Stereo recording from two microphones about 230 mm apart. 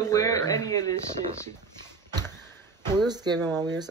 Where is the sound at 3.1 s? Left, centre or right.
Centre.